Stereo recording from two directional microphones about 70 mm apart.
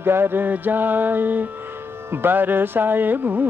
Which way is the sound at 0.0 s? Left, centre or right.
Right.